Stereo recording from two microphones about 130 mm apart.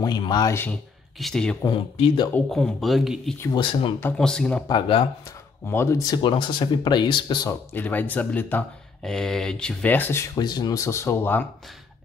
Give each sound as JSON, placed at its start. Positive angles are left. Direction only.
{"t": 0.0, "sound": "speech", "side_deg": 30}
{"t": 1.2, "sound": "speech", "side_deg": 5}
{"t": 2.0, "sound": "speech", "side_deg": 40}
{"t": 2.5, "sound": "speech", "side_deg": 0}
{"t": 3.5, "sound": "speech", "side_deg": 40}
{"t": 4.2, "sound": "speech", "side_deg": 5}
{"t": 4.6, "sound": "speech", "side_deg": 35}
{"t": 5.7, "sound": "speech", "side_deg": 20}
{"t": 6.2, "sound": "speech", "side_deg": 40}
{"t": 7.7, "sound": "speech", "side_deg": 15}
{"t": 10.3, "sound": "speech", "side_deg": 35}